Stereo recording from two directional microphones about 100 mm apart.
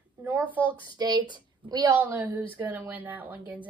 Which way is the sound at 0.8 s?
45° right (ahead or behind).